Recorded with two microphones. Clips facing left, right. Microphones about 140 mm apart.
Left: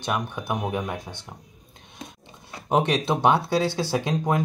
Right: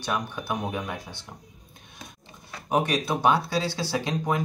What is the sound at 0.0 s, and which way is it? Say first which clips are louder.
Speech: left 2 dB; 20° left (ahead or behind).